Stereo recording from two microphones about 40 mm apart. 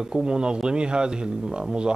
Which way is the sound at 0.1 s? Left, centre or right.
Right.